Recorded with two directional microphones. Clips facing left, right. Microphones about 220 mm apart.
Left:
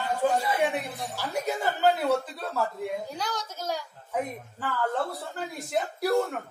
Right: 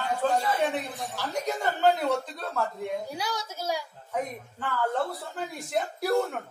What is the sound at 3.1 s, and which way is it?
Speech, 10° right (ahead or behind).